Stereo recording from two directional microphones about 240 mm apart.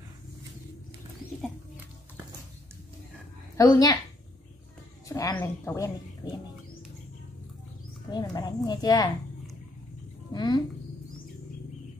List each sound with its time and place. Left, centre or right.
3.5 s a woman's voice: centre
5.0 s a woman's voice: centre
8.1 s a woman's voice: centre
10.3 s a woman's voice: centre